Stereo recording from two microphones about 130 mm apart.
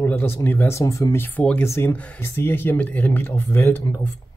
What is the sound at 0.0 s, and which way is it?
Speech, 15° left (ahead or behind).